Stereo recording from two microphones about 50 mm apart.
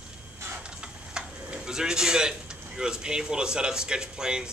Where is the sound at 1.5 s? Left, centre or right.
Centre.